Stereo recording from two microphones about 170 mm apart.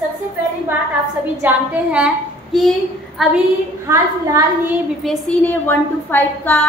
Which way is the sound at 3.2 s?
Centre (ahead or behind).